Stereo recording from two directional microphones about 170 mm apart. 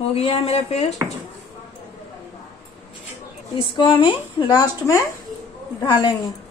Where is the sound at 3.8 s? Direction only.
30° left (ahead or behind).